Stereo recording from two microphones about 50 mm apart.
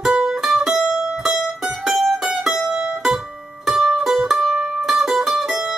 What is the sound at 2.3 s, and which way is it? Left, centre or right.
Music, centre.